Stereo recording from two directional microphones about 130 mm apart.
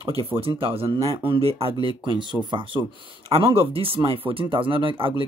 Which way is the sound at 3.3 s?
50° right (ahead or behind).